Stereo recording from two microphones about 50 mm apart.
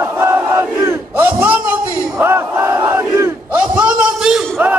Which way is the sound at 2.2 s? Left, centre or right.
Right.